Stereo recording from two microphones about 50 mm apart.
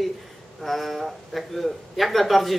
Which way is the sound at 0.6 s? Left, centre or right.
Centre.